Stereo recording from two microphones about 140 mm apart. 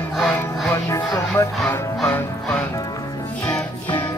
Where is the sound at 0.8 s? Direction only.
20° left (ahead or behind).